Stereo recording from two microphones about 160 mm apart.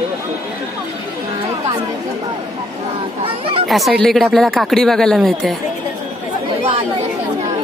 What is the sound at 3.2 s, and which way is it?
Speech, 35° right (ahead or behind).